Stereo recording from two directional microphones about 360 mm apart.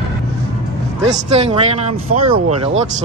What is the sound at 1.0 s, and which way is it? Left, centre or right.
Speech, centre.